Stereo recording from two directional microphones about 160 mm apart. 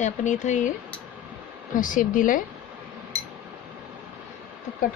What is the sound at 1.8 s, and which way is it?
Speech, 55° left (ahead or behind).